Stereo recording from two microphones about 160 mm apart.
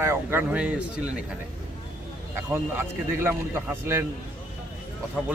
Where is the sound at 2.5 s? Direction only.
15° right (ahead or behind).